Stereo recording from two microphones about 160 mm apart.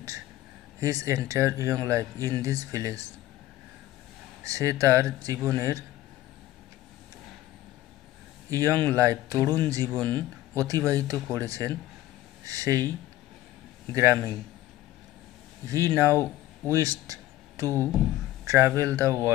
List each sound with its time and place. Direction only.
0.7 s speech: 20° right (ahead or behind)
4.4 s speech: 20° right (ahead or behind)
8.5 s speech: 20° right (ahead or behind)
13.9 s speech: 20° right (ahead or behind)
15.6 s speech: 20° right (ahead or behind)
16.6 s a sound: 20° right (ahead or behind)
17.6 s speech: 15° left (ahead or behind)
18.4 s speech: 20° right (ahead or behind)